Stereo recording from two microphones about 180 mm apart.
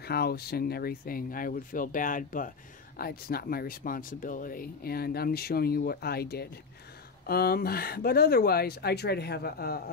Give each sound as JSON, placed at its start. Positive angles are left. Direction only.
{"t": 0.0, "sound": "speech", "side_deg": 60}